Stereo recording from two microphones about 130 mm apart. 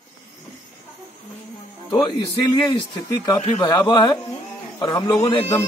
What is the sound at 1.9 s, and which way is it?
A man's voice, 35° left (ahead or behind).